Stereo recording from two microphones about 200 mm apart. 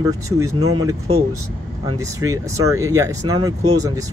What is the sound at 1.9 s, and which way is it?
Speech, 15° right (ahead or behind).